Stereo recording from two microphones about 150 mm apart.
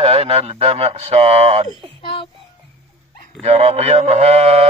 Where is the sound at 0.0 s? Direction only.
40° right (ahead or behind).